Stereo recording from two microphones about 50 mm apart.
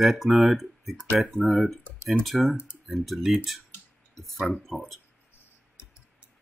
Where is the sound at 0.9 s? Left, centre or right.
Right.